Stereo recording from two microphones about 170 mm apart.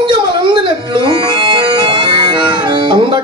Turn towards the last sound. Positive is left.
turn(degrees=-30)  # may be behind; listen again after turning